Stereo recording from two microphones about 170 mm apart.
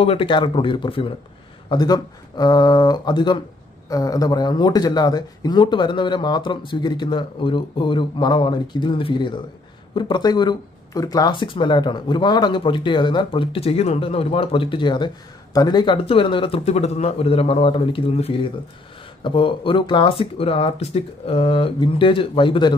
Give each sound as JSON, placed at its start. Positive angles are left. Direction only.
{"t": 0.0, "sound": "speech", "side_deg": 35}